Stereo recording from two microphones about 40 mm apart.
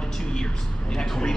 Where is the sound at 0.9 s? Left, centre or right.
Centre.